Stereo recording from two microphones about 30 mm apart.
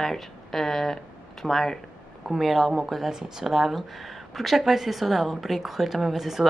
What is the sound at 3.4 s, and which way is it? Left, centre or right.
A woman's voice, centre.